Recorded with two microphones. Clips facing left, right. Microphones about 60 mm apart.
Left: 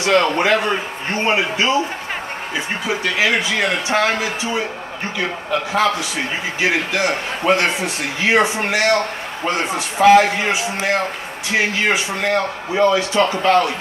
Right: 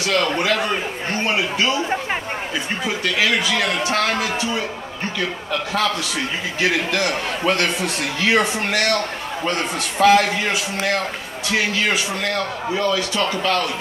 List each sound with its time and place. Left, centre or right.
0.0 s a man's voice: left
3.2 s a man's voice: left
6.6 s a man's voice: left